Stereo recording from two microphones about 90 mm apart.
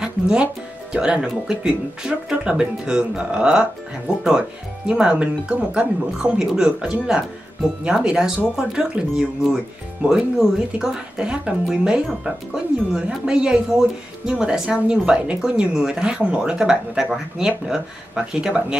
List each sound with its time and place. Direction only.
0.0 s a woman's voice: 10° right (ahead or behind)
10.8 s a woman's voice: 5° right (ahead or behind)